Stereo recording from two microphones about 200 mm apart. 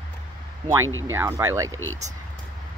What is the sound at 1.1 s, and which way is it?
Speech, 15° right (ahead or behind).